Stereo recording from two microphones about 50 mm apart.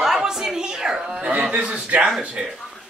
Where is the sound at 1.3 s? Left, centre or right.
Right.